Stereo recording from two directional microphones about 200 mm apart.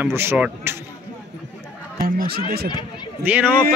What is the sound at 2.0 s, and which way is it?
Speech, 50° right (ahead or behind).